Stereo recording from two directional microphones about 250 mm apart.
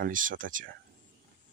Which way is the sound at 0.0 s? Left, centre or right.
Right.